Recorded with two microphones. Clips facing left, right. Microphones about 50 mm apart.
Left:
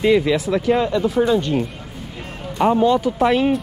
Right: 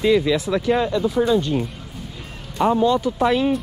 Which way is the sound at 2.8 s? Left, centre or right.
Left.